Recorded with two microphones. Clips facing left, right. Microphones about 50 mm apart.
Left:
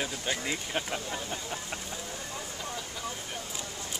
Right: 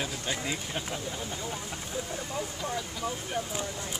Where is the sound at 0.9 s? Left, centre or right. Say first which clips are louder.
Left 1 dB; left.